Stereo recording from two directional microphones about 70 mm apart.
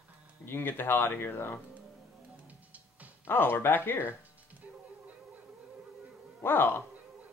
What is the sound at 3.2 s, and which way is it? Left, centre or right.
Speech, left.